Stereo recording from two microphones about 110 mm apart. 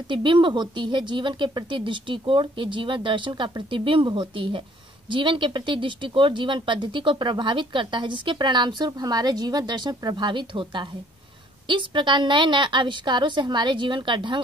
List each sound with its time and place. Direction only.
0.1 s speech: 45° right (ahead or behind)